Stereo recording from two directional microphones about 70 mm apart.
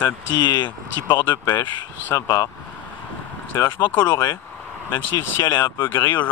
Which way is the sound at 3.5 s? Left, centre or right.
Left.